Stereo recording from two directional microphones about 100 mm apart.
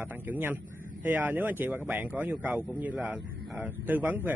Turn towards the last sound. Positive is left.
turn(degrees=-20)  # may be behind; listen again after turning